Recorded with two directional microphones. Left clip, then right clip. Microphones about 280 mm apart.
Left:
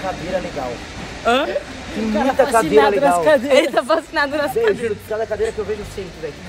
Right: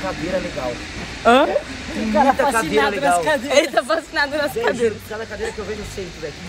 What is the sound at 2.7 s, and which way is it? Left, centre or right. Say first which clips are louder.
Speech: left 6 dB; left.